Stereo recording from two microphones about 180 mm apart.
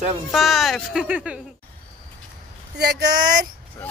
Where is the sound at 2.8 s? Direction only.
65° right (ahead or behind).